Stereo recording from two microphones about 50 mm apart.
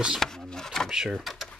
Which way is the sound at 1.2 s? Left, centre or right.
Centre.